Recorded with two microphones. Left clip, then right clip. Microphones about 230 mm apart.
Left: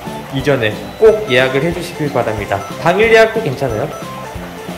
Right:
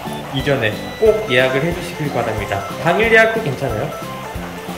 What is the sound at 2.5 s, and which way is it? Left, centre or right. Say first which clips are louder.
Speech: left 3 dB; centre.